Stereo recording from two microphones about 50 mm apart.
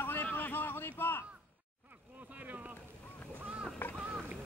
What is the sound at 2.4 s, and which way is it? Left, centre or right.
Boat, right.